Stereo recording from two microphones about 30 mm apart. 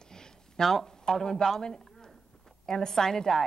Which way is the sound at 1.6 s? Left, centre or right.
Left.